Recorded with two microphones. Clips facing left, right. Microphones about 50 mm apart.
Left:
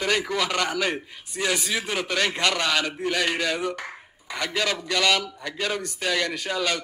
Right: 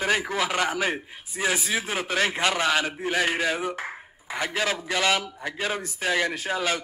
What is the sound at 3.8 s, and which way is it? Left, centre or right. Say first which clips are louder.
Dishes: right 2 dB; centre.